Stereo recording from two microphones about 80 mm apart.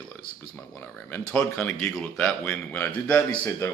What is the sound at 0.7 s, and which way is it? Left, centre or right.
Speech, left.